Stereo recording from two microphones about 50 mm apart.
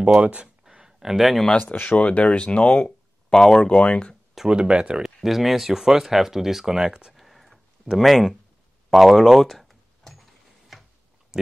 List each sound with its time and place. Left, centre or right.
0.2 s speech: right
0.7 s a sound: centre
1.6 s speech: left
3.3 s speech: centre
3.7 s speech: left
4.5 s speech: centre
5.0 s speech: centre
7.2 s a sound: centre